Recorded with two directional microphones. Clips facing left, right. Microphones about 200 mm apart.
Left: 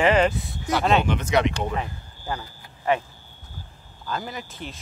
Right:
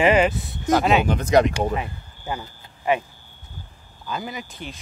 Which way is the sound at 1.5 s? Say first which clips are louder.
Right 3 dB; 10° right (ahead or behind).